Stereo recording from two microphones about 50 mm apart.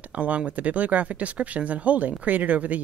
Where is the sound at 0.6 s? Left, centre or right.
Right.